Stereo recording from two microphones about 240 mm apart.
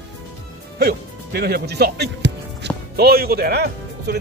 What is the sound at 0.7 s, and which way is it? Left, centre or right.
Speech, right.